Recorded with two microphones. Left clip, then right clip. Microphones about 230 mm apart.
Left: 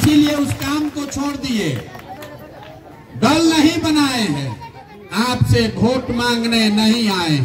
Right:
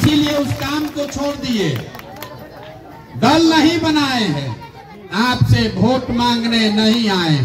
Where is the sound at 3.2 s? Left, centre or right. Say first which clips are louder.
Right 2 dB; left.